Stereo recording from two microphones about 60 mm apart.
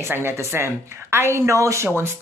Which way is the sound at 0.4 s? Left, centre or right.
Right.